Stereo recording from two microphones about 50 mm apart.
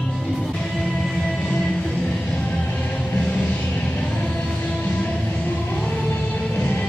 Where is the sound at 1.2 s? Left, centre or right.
Centre.